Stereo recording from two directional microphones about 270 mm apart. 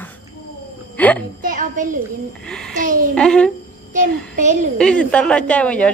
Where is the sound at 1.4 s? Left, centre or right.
Right.